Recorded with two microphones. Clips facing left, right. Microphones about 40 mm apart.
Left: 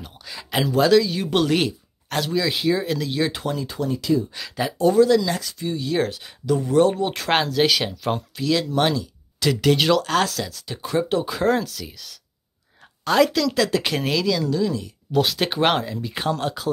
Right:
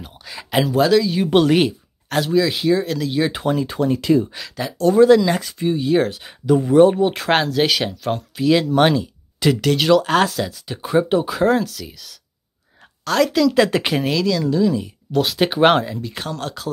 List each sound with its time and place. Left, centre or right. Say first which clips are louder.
0.0 s speech: right 2 dB; centre
1.2 s speech: right 5 dB; centre
2.0 s speech: right 5 dB; centre
3.3 s speech: right 5 dB; right
3.5 s speech: right 6 dB; right
5.7 s speech: right 6 dB; centre
8.5 s speech: right 6 dB; right
9.5 s speech: right 3 dB; centre
10.0 s speech: right 4 dB; centre
11.2 s speech: right 3 dB; centre
13.6 s speech: right 3 dB; right
13.9 s speech: right 3 dB; centre
16.1 s speech: left 3 dB; centre